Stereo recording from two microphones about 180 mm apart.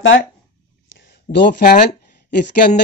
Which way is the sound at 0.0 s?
90° left.